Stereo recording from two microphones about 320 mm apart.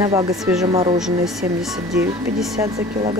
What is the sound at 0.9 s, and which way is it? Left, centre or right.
Speech, centre.